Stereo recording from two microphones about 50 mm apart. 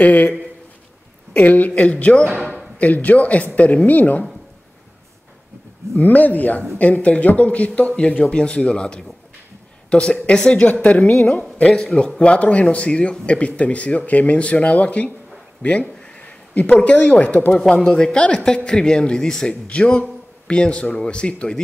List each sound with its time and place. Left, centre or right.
0.0 s a woman's voice: left
5.9 s a woman's voice: left
16.2 s a sound: left
16.7 s speech: left
17.0 s a woman's voice: left
17.5 s speech: centre